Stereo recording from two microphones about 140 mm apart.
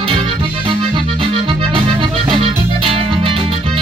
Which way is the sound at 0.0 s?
40° right (ahead or behind).